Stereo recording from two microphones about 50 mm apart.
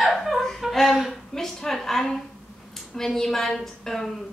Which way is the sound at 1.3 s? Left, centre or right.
Centre.